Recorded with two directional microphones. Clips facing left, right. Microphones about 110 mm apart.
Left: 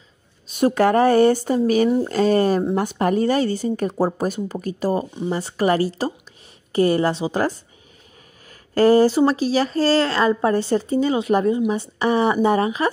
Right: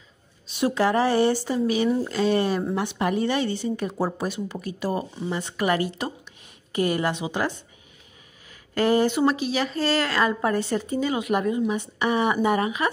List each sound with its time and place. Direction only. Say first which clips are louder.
0.5 s speech: left 5 dB; 50° left (ahead or behind); by 12.9 s 30° left (ahead or behind)